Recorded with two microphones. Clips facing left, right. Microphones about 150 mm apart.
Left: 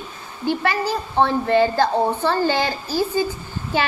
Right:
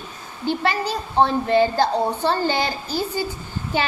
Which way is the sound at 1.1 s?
15° right (ahead or behind).